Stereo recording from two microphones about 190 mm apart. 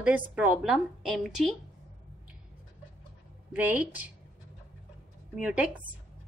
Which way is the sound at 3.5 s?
10° right (ahead or behind).